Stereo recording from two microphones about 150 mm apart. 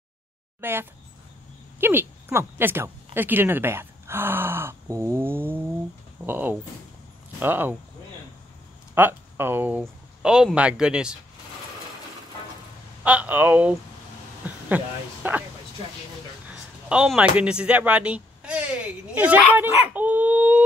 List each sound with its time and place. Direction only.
0.6 s a woman's voice: 15° right (ahead or behind)
8.9 s speech: 15° right (ahead or behind)
13.0 s speech: 10° right (ahead or behind)
16.9 s speech: 5° right (ahead or behind)
19.9 s dog: 10° right (ahead or behind)